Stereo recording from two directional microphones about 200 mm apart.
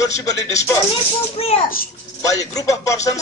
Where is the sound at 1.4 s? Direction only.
30° left (ahead or behind).